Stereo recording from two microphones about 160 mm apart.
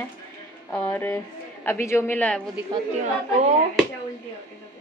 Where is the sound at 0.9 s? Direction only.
15° left (ahead or behind).